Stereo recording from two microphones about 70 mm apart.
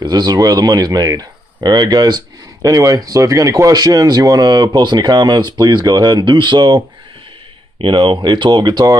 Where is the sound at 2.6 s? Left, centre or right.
Right.